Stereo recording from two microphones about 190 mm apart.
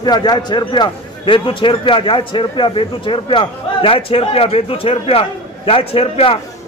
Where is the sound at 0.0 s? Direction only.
20° left (ahead or behind).